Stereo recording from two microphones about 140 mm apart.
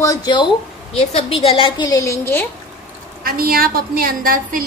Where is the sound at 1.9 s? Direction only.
20° left (ahead or behind).